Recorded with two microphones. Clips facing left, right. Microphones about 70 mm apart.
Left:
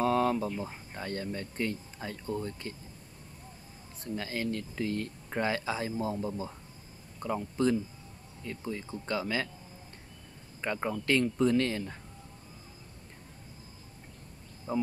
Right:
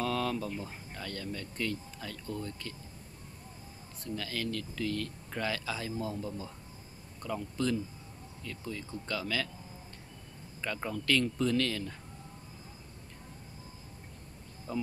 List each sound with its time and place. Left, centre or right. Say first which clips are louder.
0.0 s a sound: left 5 dB; left
0.6 s speech: left 3 dB; left
4.0 s speech: left 2 dB; left
10.6 s speech: left 4 dB; left
14.7 s speech: left 4 dB; left